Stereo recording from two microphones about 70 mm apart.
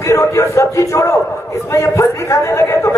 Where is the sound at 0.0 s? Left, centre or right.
Left.